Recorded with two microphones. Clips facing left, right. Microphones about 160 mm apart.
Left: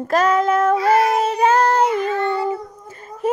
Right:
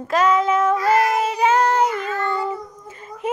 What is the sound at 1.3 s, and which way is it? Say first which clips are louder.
Child singing: left 2 dB; 45° left (ahead or behind).